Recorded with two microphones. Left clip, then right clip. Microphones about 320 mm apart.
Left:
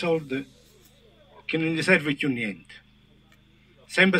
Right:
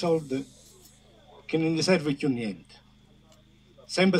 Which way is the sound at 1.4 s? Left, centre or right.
Centre.